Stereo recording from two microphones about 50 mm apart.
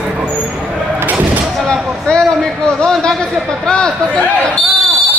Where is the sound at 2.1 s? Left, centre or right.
Left.